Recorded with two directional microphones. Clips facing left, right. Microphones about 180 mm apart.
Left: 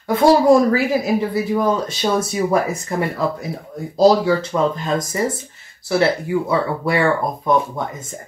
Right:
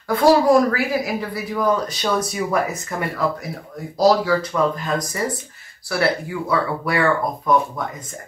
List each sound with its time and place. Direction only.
0.1 s speech: 25° left (ahead or behind)